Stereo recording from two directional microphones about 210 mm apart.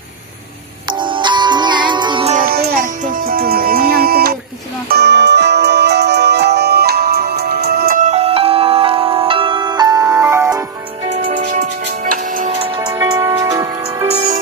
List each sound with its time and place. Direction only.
0.8 s music: 20° right (ahead or behind)
2.3 s music: 45° right (ahead or behind); by 10.6 s 15° right (ahead or behind)
11.1 s music: 25° right (ahead or behind)
11.3 s music: 35° right (ahead or behind)
12.5 s music: 25° right (ahead or behind)
12.9 s music: 15° right (ahead or behind)
14.1 s music: 30° right (ahead or behind)